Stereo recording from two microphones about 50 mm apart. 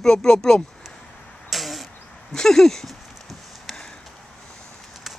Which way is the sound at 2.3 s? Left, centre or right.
Centre.